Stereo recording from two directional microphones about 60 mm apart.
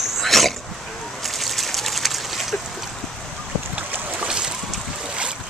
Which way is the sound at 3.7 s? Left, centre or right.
Right.